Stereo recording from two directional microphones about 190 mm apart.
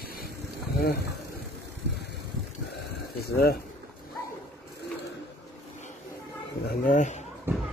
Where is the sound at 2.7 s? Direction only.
60° left (ahead or behind).